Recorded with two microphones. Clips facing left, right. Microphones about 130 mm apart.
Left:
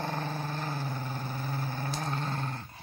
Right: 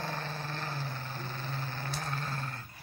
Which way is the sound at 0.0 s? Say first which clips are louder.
Left 4 dB; 15° left (ahead or behind).